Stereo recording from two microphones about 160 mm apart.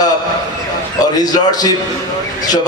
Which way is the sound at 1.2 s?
25° left (ahead or behind).